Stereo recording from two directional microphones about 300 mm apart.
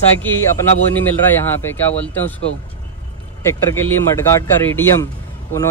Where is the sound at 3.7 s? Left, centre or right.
Centre.